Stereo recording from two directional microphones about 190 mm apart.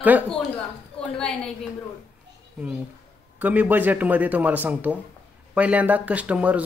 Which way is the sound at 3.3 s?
10° right (ahead or behind).